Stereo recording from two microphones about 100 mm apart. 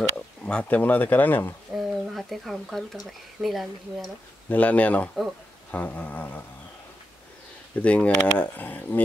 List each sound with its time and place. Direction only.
0.5 s speech: 10° left (ahead or behind)
1.8 s speech: centre (ahead or behind)
4.5 s speech: 15° left (ahead or behind)
7.8 s speech: 10° left (ahead or behind)